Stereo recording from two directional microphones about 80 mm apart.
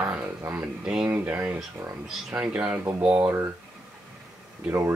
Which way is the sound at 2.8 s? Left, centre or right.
Right.